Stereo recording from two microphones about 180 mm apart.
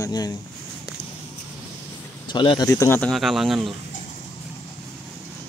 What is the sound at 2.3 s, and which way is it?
Speech, 25° left (ahead or behind).